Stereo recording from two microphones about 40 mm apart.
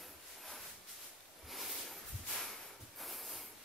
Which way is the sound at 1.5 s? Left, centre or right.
Centre.